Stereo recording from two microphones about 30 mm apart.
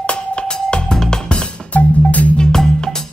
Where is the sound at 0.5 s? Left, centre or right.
Left.